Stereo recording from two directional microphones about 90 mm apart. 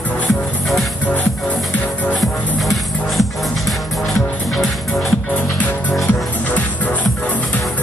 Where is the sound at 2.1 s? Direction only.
Centre (ahead or behind).